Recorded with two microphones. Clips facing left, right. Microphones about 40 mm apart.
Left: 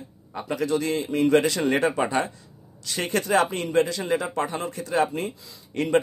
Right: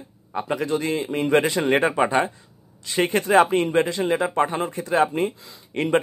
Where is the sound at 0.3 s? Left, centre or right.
Right.